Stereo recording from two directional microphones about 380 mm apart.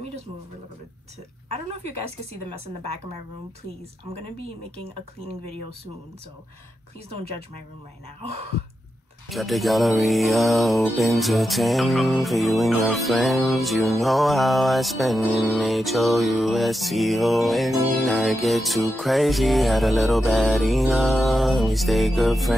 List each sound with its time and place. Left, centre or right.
2.4 s a woman's voice: centre
5.2 s a woman's voice: centre
9.3 s music: centre